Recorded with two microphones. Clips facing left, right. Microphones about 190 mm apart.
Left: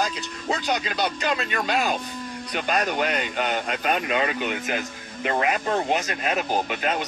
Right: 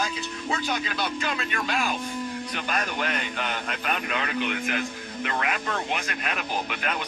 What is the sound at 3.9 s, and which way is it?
Speech, 25° left (ahead or behind).